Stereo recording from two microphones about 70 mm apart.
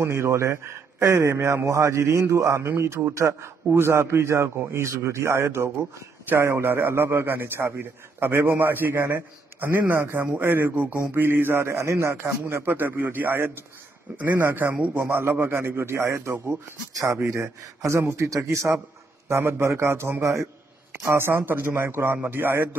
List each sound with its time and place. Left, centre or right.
0.0 s a man's voice: right
16.9 s a man's voice: right
17.2 s a man's voice: right